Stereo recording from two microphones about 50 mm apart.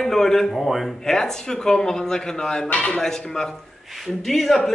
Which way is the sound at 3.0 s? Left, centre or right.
Centre.